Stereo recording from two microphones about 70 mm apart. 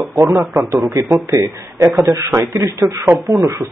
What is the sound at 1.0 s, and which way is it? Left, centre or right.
Speech, right.